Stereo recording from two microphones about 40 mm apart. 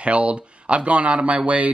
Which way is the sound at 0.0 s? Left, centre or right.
Right.